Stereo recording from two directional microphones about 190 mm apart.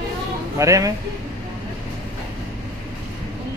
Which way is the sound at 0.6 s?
15° right (ahead or behind).